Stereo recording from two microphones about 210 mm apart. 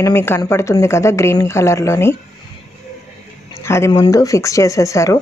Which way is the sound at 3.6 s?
15° left (ahead or behind).